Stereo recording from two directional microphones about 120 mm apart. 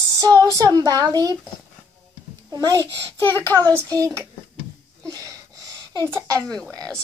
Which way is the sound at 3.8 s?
25° right (ahead or behind).